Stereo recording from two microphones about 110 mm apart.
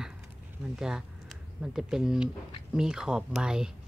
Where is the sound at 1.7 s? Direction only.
5° right (ahead or behind).